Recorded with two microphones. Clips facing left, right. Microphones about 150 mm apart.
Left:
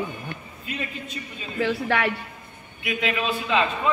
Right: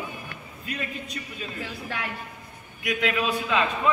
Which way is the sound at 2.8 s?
Centre (ahead or behind).